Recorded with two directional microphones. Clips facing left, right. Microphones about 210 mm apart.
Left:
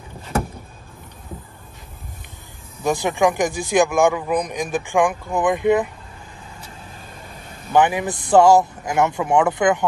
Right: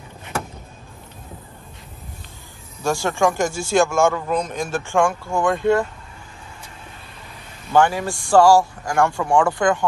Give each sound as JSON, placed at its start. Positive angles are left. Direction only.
{"t": 2.8, "sound": "a man's voice", "side_deg": 20}
{"t": 7.7, "sound": "speech", "side_deg": 20}